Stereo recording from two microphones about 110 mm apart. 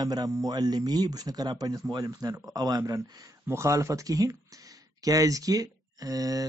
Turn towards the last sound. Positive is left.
turn(degrees=-35)  # may be behind; listen again after turning